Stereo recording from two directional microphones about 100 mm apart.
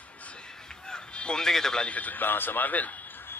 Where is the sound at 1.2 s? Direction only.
5° left (ahead or behind).